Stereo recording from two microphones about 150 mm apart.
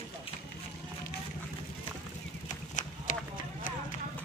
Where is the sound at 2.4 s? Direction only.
55° left (ahead or behind).